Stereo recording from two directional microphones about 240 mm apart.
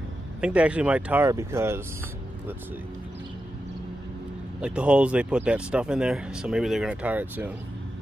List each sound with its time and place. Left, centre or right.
0.4 s speech: centre
4.6 s speech: centre